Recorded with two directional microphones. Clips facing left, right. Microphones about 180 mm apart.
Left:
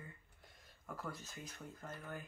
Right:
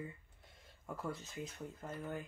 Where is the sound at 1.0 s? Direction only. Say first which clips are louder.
Right 5 dB; 25° right (ahead or behind).